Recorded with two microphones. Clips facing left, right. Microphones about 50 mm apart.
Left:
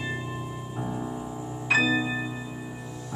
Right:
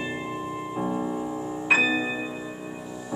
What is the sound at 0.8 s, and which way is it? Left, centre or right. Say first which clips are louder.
Music: right 5 dB; right.